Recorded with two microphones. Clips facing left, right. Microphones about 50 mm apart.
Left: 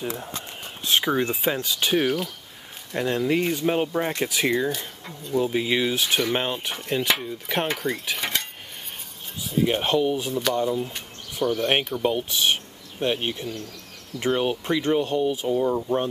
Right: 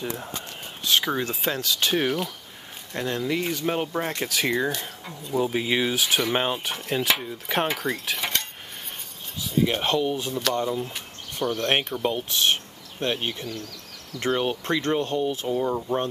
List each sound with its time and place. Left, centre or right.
0.0 s speech: centre
0.8 s speech: centre
2.0 s speech: centre
3.0 s speech: centre
3.6 s speech: centre
9.5 s speech: centre
15.6 s speech: centre